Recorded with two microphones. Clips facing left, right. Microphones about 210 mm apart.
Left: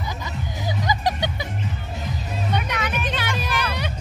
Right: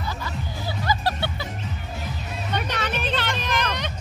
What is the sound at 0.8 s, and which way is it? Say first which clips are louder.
Music: left 1 dB; 15° left (ahead or behind).